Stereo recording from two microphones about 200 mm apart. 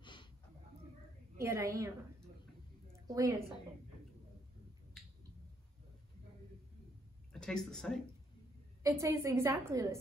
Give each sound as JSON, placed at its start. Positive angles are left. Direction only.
{"t": 0.0, "sound": "a sound", "side_deg": 25}
{"t": 1.4, "sound": "a woman's voice", "side_deg": -15}
{"t": 3.1, "sound": "a woman's voice", "side_deg": -15}
{"t": 5.0, "sound": "finger snapping", "side_deg": 0}
{"t": 7.3, "sound": "speech", "side_deg": 5}
{"t": 8.8, "sound": "a woman's voice", "side_deg": -15}